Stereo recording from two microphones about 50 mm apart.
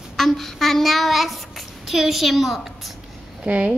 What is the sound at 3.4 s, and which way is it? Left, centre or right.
Speech, right.